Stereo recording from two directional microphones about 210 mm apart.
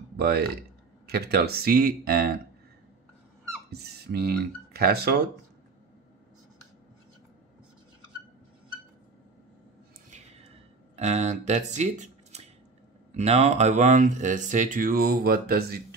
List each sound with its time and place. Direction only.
0.2 s speech: 50° right (ahead or behind)
3.7 s speech: 50° right (ahead or behind)
11.0 s speech: 30° right (ahead or behind)